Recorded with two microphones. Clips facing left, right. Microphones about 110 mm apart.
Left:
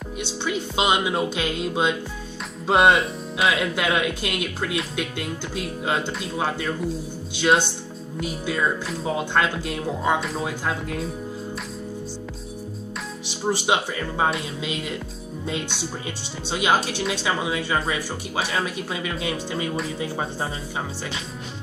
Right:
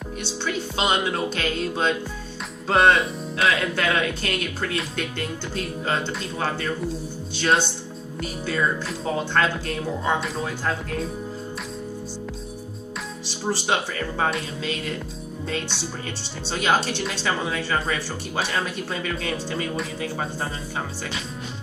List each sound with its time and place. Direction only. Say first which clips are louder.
0.2 s speech: left 1 dB; 15° left (ahead or behind)
2.9 s speech: even; centre (ahead or behind)
3.7 s speech: even; 10° left (ahead or behind)
8.8 s speech: even; centre (ahead or behind)
13.5 s speech: left 2 dB; 15° left (ahead or behind)
16.4 s speech: left 1 dB; 10° left (ahead or behind)